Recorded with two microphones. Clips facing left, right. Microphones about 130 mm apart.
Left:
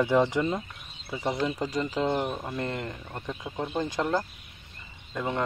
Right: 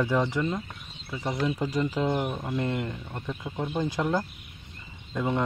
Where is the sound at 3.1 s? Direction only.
10° left (ahead or behind).